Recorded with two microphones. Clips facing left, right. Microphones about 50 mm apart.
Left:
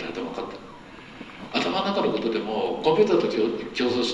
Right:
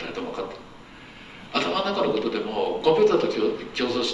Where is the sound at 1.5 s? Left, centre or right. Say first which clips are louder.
Even; right.